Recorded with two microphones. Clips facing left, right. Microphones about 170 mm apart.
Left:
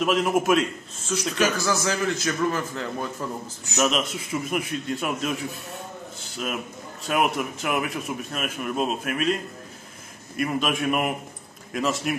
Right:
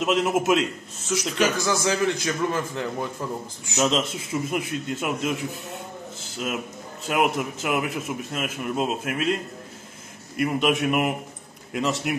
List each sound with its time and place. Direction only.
0.0 s a man's voice: 20° right (ahead or behind)
7.1 s a man's voice: 20° right (ahead or behind)